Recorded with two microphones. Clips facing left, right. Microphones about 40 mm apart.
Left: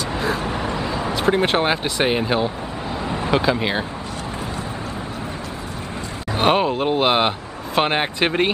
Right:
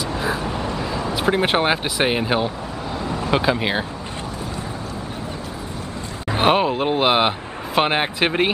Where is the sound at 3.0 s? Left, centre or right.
Left.